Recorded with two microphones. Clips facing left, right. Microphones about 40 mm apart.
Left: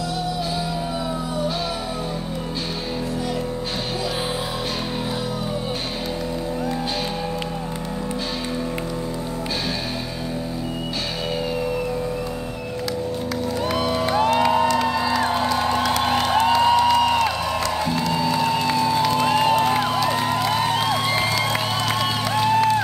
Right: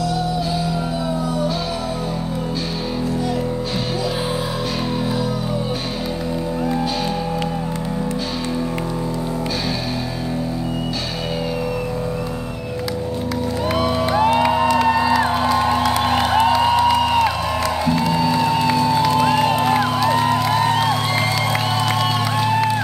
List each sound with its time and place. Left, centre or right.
13.7 s music: centre